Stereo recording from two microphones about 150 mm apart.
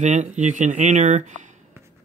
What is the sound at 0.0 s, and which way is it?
Speech, 50° right (ahead or behind).